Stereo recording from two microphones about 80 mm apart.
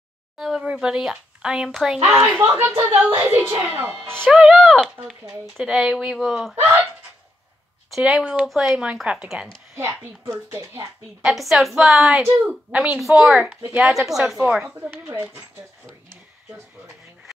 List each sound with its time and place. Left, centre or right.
0.4 s speech: centre
2.5 s a woman's voice: right
5.0 s speech: centre
6.5 s speech: right
8.0 s speech: centre
9.8 s speech: right
11.2 s a woman's voice: centre
12.4 s speech: centre
13.7 s a woman's voice: centre
14.6 s speech: right